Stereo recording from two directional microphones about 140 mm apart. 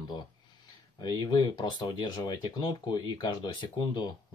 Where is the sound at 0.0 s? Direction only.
30° left (ahead or behind).